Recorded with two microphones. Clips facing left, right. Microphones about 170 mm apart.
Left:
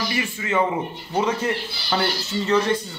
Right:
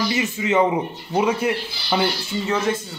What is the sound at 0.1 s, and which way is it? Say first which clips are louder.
Speech: right 4 dB; 20° right (ahead or behind).